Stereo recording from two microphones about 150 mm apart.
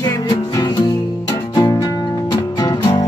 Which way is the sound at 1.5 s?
25° left (ahead or behind).